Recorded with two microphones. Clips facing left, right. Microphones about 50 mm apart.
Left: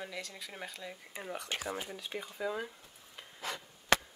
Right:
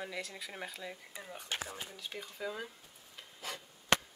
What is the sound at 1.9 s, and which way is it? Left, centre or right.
Speech, centre.